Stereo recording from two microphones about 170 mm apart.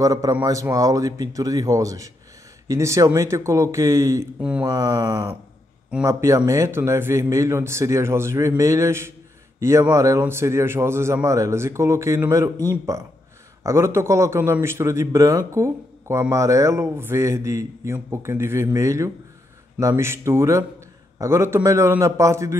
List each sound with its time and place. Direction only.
0.0 s a man's voice: 20° right (ahead or behind)
4.4 s a man's voice: 5° right (ahead or behind)
4.6 s a man's voice: 20° right (ahead or behind)